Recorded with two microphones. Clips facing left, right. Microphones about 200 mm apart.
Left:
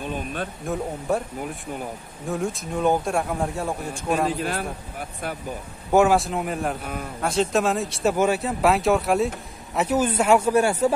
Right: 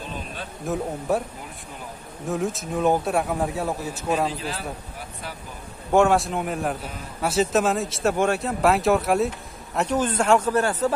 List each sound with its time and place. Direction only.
0.0 s a sound: 55° left (ahead or behind)
0.7 s speech: centre (ahead or behind)
2.2 s speech: centre (ahead or behind)
4.4 s a man's voice: 55° left (ahead or behind)
5.9 s speech: 5° left (ahead or behind)